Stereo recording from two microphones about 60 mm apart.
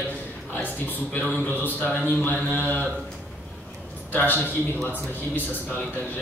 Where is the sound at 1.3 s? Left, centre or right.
Left.